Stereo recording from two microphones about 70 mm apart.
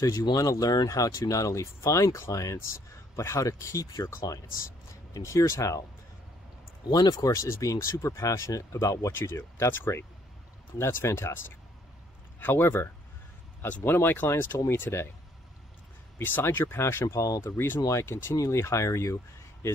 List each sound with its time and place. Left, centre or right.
0.5 s speech: left
6.9 s speech: left
7.4 s speech: left
9.1 s speech: left
12.4 s speech: left
16.2 s speech: left
17.5 s speech: left